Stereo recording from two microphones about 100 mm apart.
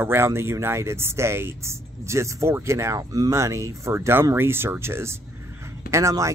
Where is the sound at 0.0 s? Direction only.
25° right (ahead or behind).